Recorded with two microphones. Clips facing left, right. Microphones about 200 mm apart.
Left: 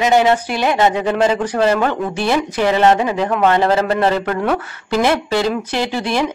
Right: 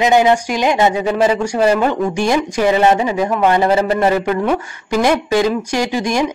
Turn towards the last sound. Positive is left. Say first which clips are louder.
# right 2 dB
turn(degrees=-15)  # may be behind; listen again after turning